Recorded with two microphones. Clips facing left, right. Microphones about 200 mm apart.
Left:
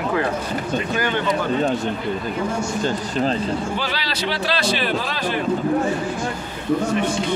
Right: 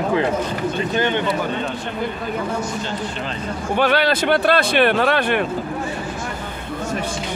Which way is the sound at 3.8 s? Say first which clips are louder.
Right 9 dB; 60° right (ahead or behind).